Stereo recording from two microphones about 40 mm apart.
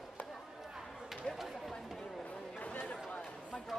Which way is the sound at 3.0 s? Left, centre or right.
Left.